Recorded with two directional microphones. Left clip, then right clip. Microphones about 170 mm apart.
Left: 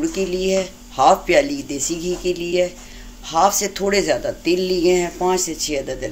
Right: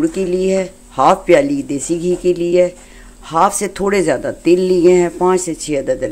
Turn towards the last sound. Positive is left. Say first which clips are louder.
# right 5 dB
turn(degrees=-65)  # may be behind; listen again after turning